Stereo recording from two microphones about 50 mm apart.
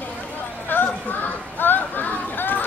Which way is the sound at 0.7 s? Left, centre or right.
Left.